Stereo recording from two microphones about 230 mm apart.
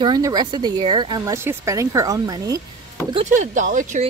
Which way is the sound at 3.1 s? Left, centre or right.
Right.